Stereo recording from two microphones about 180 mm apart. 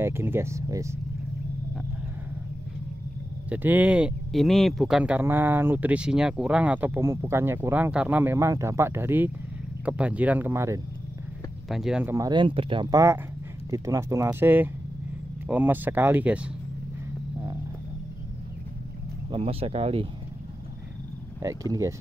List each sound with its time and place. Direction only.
0.0 s speech: 15° right (ahead or behind)
3.4 s speech: 10° right (ahead or behind)
11.7 s speech: 5° right (ahead or behind)
12.2 s speech: 25° right (ahead or behind)
19.3 s speech: 35° right (ahead or behind)
21.4 s speech: 20° right (ahead or behind)